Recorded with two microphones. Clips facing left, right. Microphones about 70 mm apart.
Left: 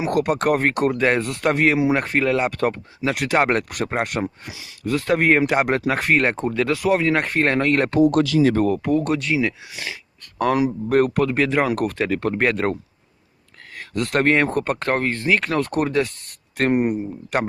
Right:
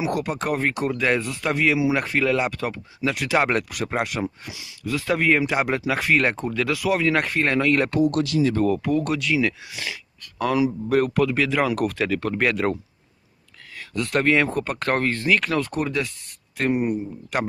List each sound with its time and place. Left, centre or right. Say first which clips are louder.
0.1 s speech: left 6 dB; left
1.2 s speech: left 4 dB; left
4.2 s speech: left 1 dB; left
4.8 s speech: left 3 dB; left
6.1 s speech: left 2 dB; left
7.3 s speech: left 2 dB; left
8.7 s speech: left 2 dB; left
10.4 s speech: left 2 dB; left
13.7 s speech: left 2 dB; left
14.8 s speech: left 1 dB; left
15.6 s speech: left 5 dB; left
16.7 s speech: left 3 dB; left
17.3 s speech: left 3 dB; left